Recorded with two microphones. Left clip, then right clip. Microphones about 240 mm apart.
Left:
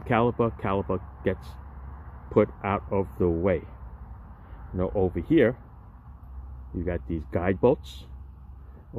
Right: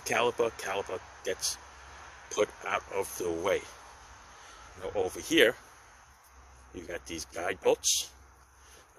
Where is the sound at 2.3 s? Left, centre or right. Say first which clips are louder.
Left 6 dB; centre.